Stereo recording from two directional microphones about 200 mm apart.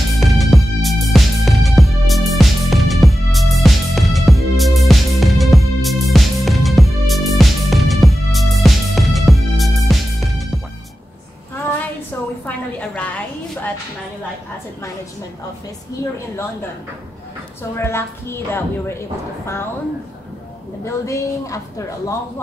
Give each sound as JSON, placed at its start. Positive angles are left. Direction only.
{"t": 0.2, "sound": "music", "side_deg": 0}
{"t": 11.5, "sound": "a sound", "side_deg": 10}
{"t": 17.7, "sound": "a woman's voice", "side_deg": 10}
{"t": 20.8, "sound": "a woman's voice", "side_deg": 15}